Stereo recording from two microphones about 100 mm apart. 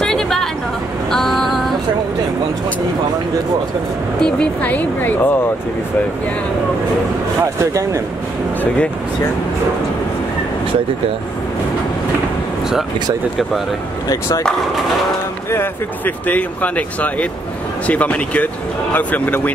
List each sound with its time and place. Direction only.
0.0 s a sound: 5° left (ahead or behind)
1.1 s female singing: 5° left (ahead or behind)
4.2 s speech: 10° left (ahead or behind)
16.3 s speech: 15° left (ahead or behind)